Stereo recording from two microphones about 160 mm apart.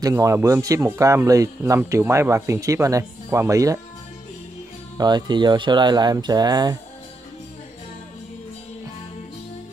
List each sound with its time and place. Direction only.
0.0 s speech: 20° right (ahead or behind)
4.9 s speech: 25° right (ahead or behind)